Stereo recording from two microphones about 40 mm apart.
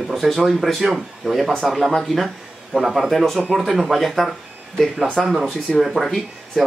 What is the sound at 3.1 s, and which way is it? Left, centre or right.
Speech, centre.